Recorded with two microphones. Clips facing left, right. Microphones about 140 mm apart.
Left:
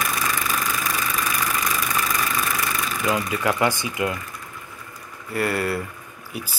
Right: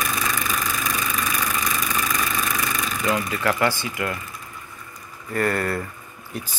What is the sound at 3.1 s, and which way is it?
Speech, 15° left (ahead or behind).